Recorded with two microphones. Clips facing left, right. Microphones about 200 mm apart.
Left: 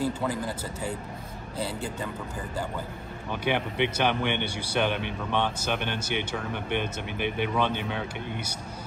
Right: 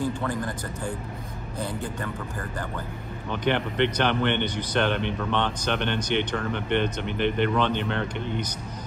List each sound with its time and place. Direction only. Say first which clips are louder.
0.0 s speech: right 1 dB; 10° left (ahead or behind)
1.6 s a man's voice: right 1 dB; 15° right (ahead or behind)
3.3 s speech: right 2 dB; 10° left (ahead or behind)